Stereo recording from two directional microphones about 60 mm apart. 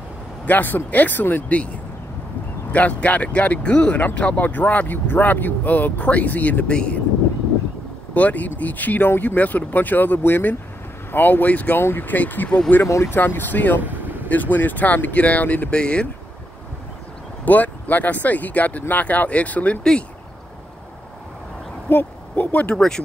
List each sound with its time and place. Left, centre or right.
0.5 s speech: left
2.7 s speech: left
6.7 s speech: centre
8.1 s speech: left
12.8 s speech: left
13.1 s speech: left
13.8 s vehicle: right
14.3 s speech: left
17.5 s speech: left
19.8 s speech: centre
21.8 s speech: left
22.8 s speech: centre